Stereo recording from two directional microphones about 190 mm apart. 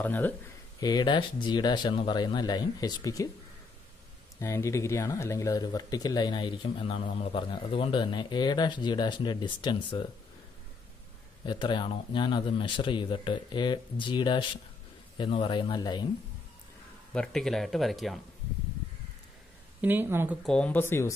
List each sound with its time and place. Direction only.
0.0 s speech: 10° left (ahead or behind)
0.7 s speech: 20° left (ahead or behind)
4.4 s speech: 15° left (ahead or behind)
11.4 s speech: 25° left (ahead or behind)
17.1 s speech: 5° left (ahead or behind)
19.8 s speech: 10° right (ahead or behind)
20.4 s speech: 5° left (ahead or behind)